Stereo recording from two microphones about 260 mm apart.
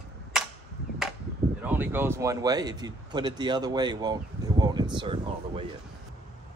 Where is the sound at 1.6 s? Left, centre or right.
Centre.